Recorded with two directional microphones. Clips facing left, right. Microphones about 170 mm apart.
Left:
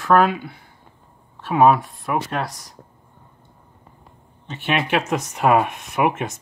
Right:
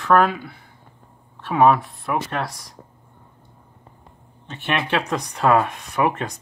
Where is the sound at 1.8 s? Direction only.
Centre (ahead or behind).